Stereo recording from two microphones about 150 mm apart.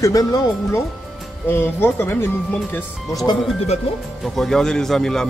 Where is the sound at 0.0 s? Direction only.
25° left (ahead or behind).